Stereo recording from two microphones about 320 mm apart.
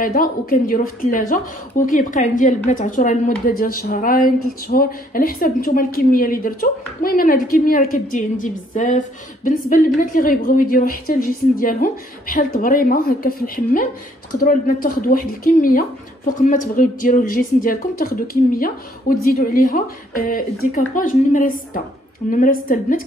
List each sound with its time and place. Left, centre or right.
0.0 s a woman's voice: left